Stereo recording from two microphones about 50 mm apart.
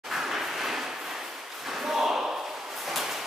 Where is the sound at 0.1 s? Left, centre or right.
Centre.